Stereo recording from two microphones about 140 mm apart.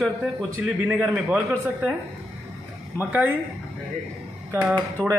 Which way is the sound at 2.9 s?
10° right (ahead or behind).